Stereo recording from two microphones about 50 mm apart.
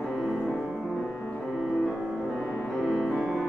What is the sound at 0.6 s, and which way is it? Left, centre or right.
Music, centre.